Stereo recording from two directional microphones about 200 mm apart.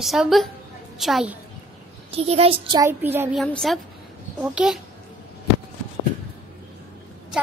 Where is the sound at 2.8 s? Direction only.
10° right (ahead or behind).